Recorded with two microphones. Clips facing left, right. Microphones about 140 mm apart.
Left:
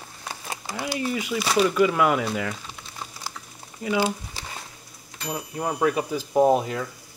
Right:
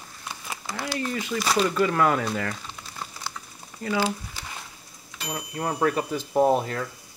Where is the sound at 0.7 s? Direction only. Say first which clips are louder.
Left 2 dB; 15° left (ahead or behind).